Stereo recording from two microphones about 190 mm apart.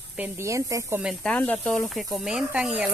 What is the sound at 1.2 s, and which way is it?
Speech, 10° left (ahead or behind).